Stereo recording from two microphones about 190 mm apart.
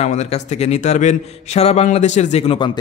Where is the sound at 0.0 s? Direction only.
35° left (ahead or behind).